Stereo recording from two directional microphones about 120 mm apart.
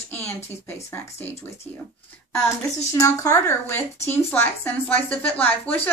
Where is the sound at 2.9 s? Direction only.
25° left (ahead or behind).